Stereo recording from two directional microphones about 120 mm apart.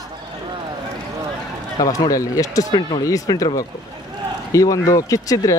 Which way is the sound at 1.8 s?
30° left (ahead or behind).